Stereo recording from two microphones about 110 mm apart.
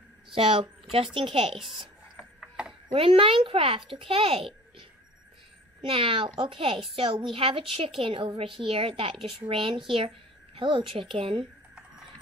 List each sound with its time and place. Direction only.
0.3 s a child's voice: 50° right (ahead or behind)
2.9 s a child's voice: 55° right (ahead or behind)